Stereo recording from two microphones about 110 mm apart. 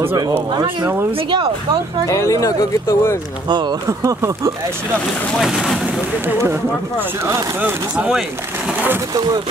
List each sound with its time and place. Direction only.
2.0 s speech: 30° left (ahead or behind)
5.4 s speech: centre (ahead or behind)
6.2 s speech: 20° right (ahead or behind)
9.1 s speech: 40° right (ahead or behind)